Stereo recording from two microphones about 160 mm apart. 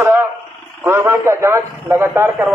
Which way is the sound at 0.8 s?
15° right (ahead or behind).